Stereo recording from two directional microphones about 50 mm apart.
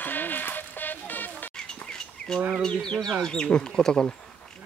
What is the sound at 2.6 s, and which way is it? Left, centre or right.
Speech, centre.